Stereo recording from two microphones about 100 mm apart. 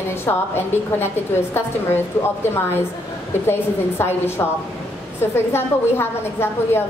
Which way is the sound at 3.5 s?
25° left (ahead or behind).